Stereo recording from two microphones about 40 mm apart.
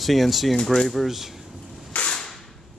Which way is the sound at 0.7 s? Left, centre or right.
Centre.